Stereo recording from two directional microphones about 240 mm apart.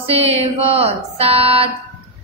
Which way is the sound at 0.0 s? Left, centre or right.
Right.